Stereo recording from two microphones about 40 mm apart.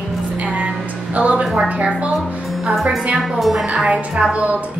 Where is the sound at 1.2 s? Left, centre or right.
Right.